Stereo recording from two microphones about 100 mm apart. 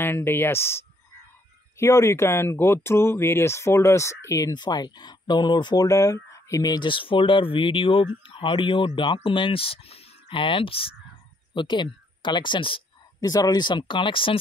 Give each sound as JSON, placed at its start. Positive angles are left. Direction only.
{"t": 0.0, "sound": "speech", "side_deg": 20}
{"t": 4.5, "sound": "speech", "side_deg": 45}
{"t": 5.9, "sound": "speech", "side_deg": 30}
{"t": 11.5, "sound": "speech", "side_deg": 50}
{"t": 13.2, "sound": "speech", "side_deg": 40}